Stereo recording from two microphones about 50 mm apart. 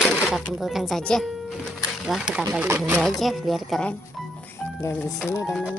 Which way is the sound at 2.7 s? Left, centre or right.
Right.